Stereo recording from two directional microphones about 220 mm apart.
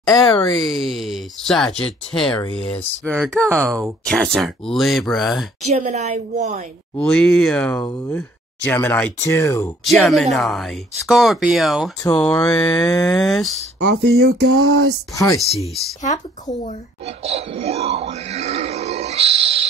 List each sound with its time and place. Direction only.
0.1 s speech: 15° left (ahead or behind)
0.7 s speech: centre (ahead or behind)
5.7 s a woman's voice: 30° right (ahead or behind)
7.0 s speech: 5° left (ahead or behind)
9.8 s speech: centre (ahead or behind)
13.7 s speech: 50° right (ahead or behind)
14.4 s speech: 70° right (ahead or behind)
15.1 s speech: 15° left (ahead or behind)
17.2 s a sound: 30° right (ahead or behind)